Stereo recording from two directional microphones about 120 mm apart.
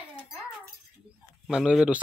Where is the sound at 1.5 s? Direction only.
5° right (ahead or behind).